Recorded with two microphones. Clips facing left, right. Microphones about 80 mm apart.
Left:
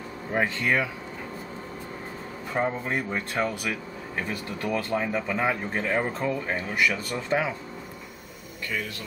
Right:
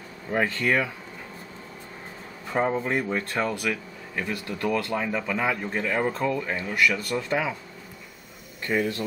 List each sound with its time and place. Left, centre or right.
0.3 s speech: centre
2.5 s speech: centre
2.9 s speech: centre
8.6 s speech: right